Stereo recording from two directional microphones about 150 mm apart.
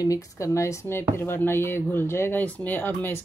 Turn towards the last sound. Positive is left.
turn(degrees=15)  # may be behind; listen again after turning